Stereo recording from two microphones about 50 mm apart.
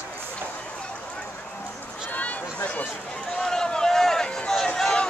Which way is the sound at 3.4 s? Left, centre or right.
Centre.